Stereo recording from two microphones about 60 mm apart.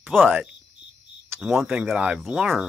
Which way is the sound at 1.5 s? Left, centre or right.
Centre.